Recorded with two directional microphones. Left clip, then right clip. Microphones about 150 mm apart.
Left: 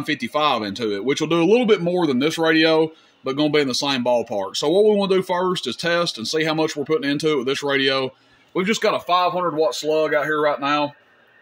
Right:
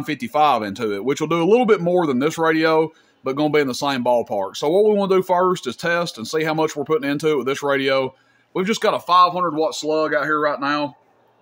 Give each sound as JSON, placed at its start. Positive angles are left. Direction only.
{"t": 0.0, "sound": "speech", "side_deg": -10}
{"t": 10.2, "sound": "speech", "side_deg": 20}